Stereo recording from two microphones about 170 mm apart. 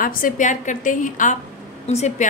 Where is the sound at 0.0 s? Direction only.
55° left (ahead or behind).